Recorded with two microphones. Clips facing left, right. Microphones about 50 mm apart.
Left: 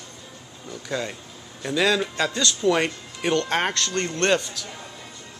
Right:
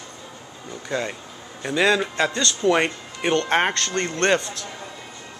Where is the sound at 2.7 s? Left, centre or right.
Centre.